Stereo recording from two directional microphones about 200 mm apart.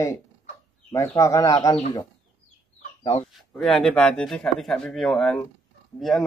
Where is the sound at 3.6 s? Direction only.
Centre (ahead or behind).